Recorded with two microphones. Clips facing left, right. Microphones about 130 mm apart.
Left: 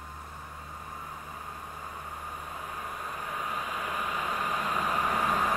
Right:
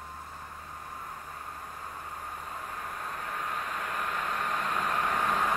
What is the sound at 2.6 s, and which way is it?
Vehicle, 5° left (ahead or behind).